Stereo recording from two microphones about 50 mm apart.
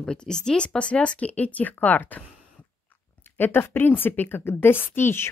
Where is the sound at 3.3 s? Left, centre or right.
Left.